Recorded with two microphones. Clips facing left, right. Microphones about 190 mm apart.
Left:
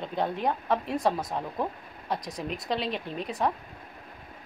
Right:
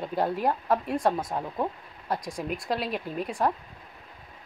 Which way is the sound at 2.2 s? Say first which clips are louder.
Right 2 dB; 25° right (ahead or behind).